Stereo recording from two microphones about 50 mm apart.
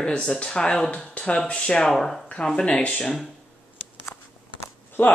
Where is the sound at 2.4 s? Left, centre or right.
Left.